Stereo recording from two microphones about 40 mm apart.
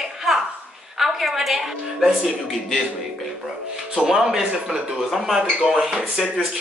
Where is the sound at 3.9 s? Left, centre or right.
Centre.